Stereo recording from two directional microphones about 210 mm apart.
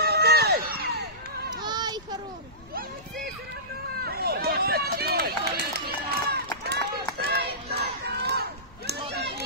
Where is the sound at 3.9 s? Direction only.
45° right (ahead or behind).